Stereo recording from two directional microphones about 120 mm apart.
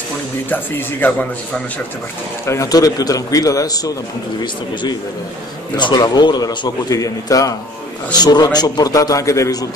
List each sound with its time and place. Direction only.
0.5 s speech: 15° left (ahead or behind)
2.4 s a man's voice: 25° left (ahead or behind)
5.8 s a man's voice: 35° left (ahead or behind)